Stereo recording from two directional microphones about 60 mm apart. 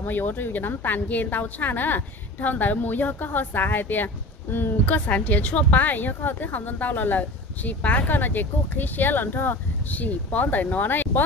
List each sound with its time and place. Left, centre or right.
0.0 s a woman's voice: left